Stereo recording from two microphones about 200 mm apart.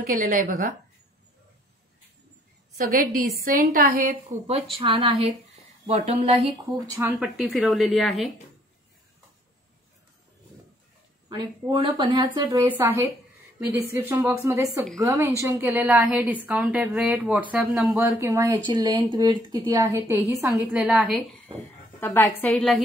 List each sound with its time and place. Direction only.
0.2 s a woman's voice: 40° right (ahead or behind)
2.9 s a woman's voice: 45° right (ahead or behind)
4.7 s speech: 25° right (ahead or behind)
6.9 s speech: 10° right (ahead or behind)
11.2 s a woman's voice: 20° right (ahead or behind); by 17.8 s 5° right (ahead or behind)
17.8 s a woman's voice: 15° right (ahead or behind)
20.7 s speech: 5° right (ahead or behind)
22.0 s a woman's voice: 10° left (ahead or behind)